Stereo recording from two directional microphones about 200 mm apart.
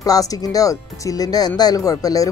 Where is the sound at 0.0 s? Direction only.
20° left (ahead or behind).